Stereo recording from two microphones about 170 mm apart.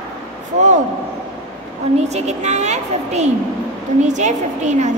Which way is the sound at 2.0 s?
40° right (ahead or behind).